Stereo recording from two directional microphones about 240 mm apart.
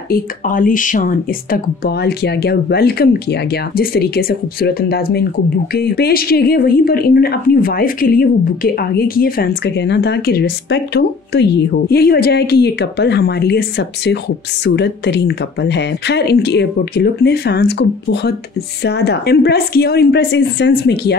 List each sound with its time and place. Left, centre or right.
0.1 s a woman's voice: left